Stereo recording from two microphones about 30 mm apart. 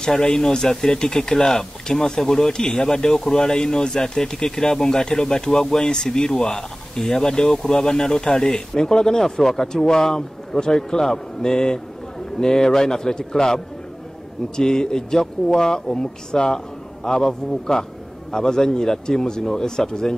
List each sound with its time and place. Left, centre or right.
0.3 s speech: left
6.5 s speech: centre
14.6 s speech: left
16.0 s speech: left